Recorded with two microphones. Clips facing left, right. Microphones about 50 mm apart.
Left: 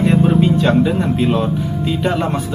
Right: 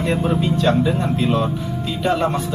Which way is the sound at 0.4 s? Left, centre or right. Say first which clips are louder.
Left 4 dB; centre.